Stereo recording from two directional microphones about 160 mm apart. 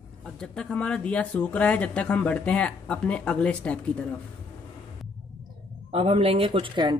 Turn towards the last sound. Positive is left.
turn(degrees=-30)  # may be behind; listen again after turning